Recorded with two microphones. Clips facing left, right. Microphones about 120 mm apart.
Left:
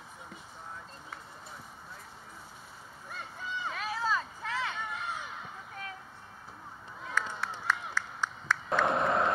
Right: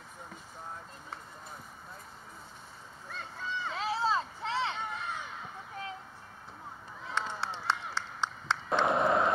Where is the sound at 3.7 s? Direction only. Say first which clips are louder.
Right 3 dB; 30° right (ahead or behind).